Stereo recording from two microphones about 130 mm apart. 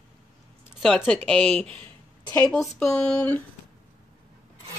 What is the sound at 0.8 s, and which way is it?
Speech, centre (ahead or behind).